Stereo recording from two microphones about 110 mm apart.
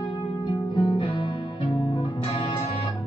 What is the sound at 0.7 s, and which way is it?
Music, 45° left (ahead or behind).